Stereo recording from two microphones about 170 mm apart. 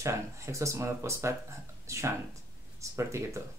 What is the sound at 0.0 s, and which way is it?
Speech, 20° right (ahead or behind).